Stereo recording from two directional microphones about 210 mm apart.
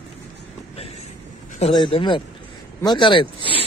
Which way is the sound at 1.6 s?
25° left (ahead or behind).